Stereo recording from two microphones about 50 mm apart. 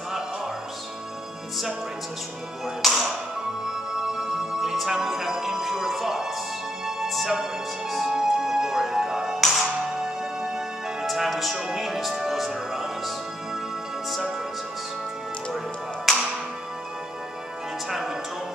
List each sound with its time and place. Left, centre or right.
2.6 s speech: centre
3.6 s music: centre
11.1 s music: centre
11.5 s music: centre
16.1 s music: centre
17.8 s music: centre